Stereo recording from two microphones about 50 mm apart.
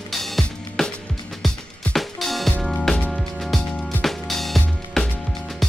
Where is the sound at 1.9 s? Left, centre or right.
Centre.